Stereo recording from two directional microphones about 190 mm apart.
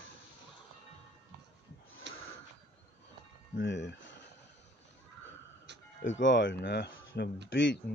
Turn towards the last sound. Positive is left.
turn(degrees=75)  # may be behind; listen again after turning